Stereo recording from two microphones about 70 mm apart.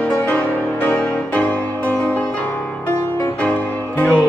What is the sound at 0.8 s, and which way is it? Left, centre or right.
Music, left.